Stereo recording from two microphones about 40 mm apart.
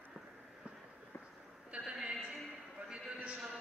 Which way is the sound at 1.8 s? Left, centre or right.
Right.